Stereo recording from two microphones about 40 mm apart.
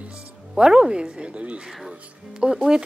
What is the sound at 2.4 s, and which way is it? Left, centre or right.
Speech, centre.